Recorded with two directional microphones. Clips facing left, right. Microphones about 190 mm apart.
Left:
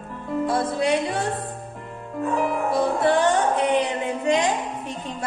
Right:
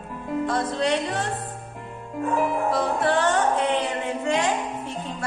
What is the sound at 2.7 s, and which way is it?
Music, 10° left (ahead or behind).